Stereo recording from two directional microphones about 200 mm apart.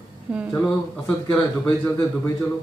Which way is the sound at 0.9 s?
10° left (ahead or behind).